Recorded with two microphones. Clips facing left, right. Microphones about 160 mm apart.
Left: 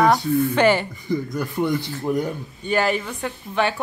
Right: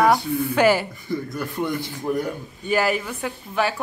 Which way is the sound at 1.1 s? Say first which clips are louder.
Left 4 dB; 15° left (ahead or behind).